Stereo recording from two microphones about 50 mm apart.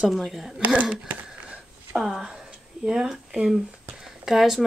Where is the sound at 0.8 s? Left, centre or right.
Right.